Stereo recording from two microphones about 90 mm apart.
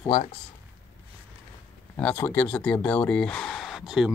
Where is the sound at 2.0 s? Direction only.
15° left (ahead or behind); by 4.1 s 5° right (ahead or behind).